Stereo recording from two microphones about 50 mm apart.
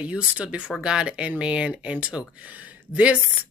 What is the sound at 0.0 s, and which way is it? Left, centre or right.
A woman's voice, right.